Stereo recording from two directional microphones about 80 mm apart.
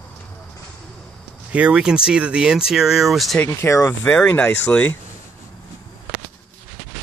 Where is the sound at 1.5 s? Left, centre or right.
Centre.